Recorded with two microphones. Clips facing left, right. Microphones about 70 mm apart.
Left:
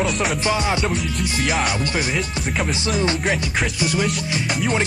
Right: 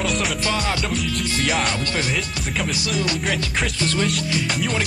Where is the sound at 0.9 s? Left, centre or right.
Centre.